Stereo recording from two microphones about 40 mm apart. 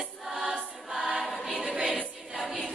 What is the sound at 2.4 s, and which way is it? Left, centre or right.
Choir, centre.